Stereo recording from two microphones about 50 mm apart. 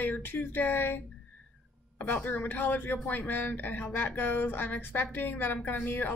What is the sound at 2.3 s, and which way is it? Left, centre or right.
Speech, left.